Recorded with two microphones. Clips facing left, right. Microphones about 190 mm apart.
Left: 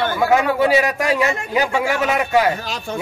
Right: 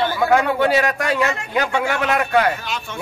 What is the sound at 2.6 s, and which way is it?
Speech, 35° left (ahead or behind).